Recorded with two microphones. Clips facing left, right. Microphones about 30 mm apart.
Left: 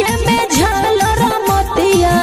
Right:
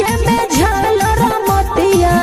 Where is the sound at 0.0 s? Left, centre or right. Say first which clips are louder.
Even; centre.